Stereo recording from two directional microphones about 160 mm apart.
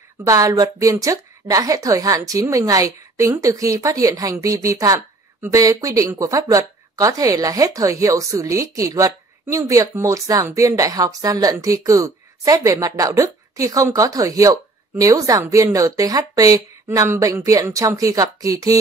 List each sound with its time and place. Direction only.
0.3 s a woman's voice: 20° right (ahead or behind)